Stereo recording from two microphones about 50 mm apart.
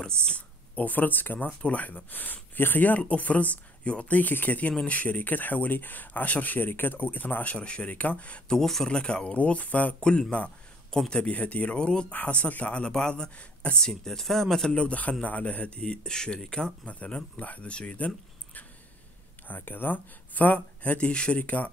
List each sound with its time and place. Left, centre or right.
0.0 s speech: centre
0.7 s speech: left
7.5 s speech: left
8.5 s speech: centre
8.8 s speech: centre
9.9 s speech: centre
12.1 s speech: left
13.7 s speech: centre
14.7 s speech: left
16.8 s speech: left
21.1 s speech: centre
21.4 s speech: left